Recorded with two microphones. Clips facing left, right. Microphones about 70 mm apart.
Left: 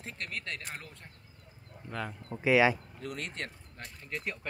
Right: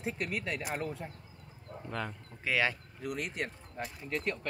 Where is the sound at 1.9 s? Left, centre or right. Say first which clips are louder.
Even; centre.